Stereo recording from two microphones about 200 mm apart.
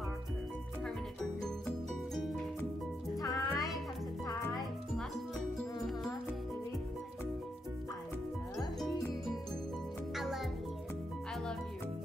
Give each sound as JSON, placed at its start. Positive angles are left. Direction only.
{"t": 3.2, "sound": "music", "side_deg": 20}
{"t": 4.3, "sound": "music", "side_deg": 0}
{"t": 10.1, "sound": "music", "side_deg": 0}